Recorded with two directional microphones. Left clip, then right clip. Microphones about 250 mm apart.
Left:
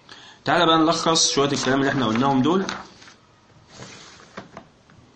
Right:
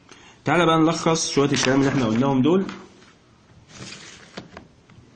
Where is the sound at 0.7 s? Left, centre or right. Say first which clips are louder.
Left 1 dB; right.